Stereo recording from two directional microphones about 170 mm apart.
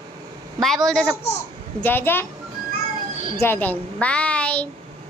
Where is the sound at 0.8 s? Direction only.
5° left (ahead or behind).